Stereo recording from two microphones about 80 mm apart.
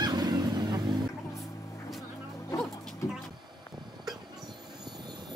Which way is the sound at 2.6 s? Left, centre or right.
Centre.